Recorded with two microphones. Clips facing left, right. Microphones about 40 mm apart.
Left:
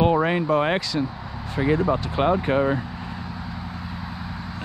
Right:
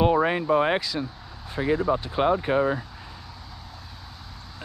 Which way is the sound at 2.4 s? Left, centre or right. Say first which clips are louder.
Left 2 dB; left.